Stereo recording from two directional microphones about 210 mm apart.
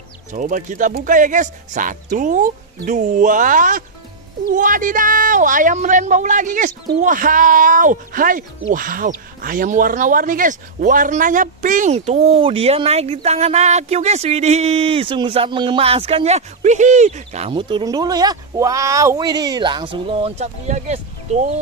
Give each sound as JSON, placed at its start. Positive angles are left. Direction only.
{"t": 0.3, "sound": "speech", "side_deg": -35}